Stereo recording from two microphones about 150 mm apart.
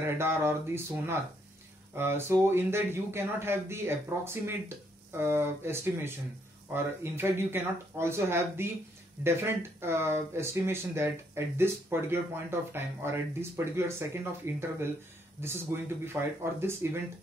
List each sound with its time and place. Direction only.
0.0 s speech: 15° right (ahead or behind)